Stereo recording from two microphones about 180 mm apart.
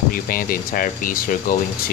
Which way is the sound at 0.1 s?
55° left (ahead or behind).